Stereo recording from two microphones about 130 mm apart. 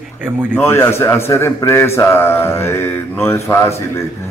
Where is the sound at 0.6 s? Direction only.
20° left (ahead or behind).